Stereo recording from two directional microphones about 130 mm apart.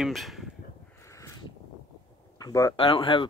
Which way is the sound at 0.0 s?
Centre (ahead or behind).